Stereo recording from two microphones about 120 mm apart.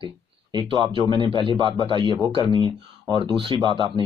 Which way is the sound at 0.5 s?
40° right (ahead or behind).